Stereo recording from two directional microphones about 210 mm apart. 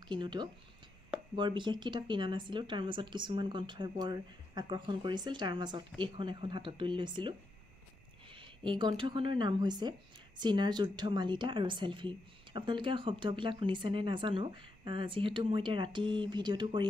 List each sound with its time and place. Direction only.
0.1 s speech: 20° right (ahead or behind)